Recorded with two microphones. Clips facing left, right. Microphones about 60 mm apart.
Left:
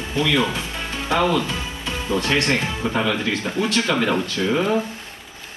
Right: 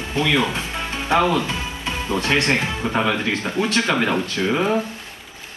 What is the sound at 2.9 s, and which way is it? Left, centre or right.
Speech, right.